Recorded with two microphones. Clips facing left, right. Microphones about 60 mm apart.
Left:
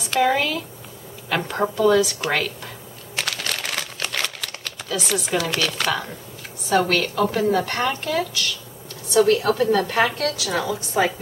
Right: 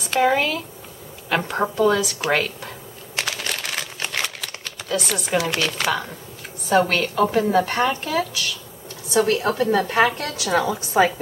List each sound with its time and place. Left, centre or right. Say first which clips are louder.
0.1 s a woman's voice: right 1 dB; centre
3.2 s crumpling: even; centre
5.3 s a woman's voice: right 3 dB; centre